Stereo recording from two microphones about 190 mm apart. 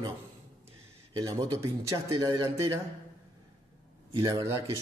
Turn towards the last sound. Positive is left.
turn(degrees=-20)  # may be behind; listen again after turning